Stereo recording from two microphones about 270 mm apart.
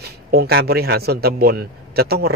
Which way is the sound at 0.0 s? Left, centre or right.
Right.